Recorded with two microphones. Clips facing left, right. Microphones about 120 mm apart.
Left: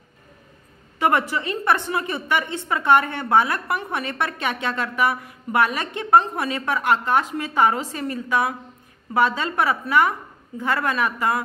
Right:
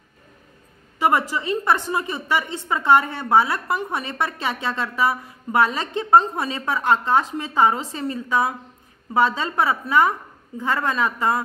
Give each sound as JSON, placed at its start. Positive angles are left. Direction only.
{"t": 1.3, "sound": "a woman's voice", "side_deg": -20}